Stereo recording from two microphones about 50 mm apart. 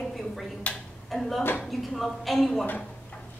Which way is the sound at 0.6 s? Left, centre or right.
Left.